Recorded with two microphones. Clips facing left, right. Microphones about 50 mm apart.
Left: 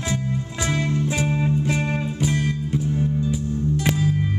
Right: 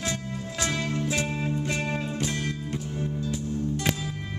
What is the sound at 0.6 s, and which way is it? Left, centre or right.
Music, centre.